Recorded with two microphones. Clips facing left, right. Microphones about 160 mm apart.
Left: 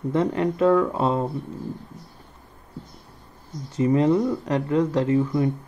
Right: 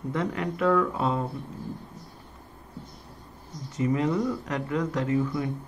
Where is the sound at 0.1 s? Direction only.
30° left (ahead or behind).